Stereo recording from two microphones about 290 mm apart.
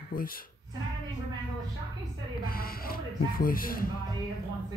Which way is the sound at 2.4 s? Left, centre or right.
Left.